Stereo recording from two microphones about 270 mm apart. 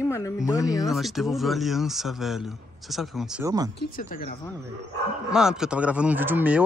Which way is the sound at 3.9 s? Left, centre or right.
Left.